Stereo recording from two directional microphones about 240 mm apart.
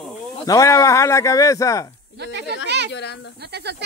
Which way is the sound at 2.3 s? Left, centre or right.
Right.